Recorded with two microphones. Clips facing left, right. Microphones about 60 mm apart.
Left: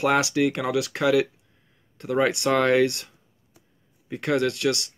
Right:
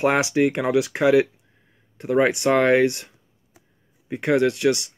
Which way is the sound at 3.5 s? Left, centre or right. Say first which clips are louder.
Right 2 dB; centre.